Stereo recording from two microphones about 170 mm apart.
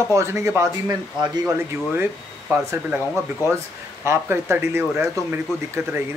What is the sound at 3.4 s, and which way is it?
Speech, 15° right (ahead or behind).